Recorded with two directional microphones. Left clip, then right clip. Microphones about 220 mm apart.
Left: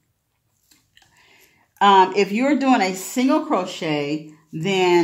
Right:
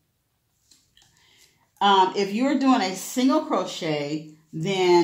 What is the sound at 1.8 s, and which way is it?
Speech, 35° left (ahead or behind).